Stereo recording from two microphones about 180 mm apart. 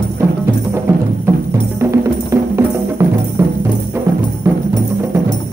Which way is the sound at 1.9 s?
15° right (ahead or behind).